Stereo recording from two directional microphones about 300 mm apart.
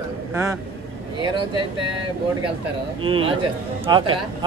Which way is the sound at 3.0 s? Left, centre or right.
Centre.